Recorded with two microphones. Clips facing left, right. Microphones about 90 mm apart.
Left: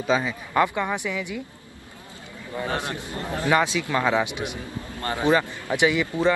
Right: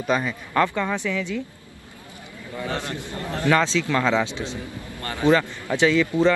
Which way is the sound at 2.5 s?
45° left (ahead or behind).